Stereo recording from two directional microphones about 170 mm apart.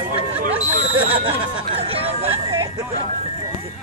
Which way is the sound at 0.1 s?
40° right (ahead or behind).